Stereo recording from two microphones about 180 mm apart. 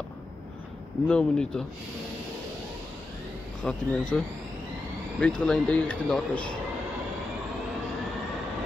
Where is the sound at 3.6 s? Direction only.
Centre (ahead or behind).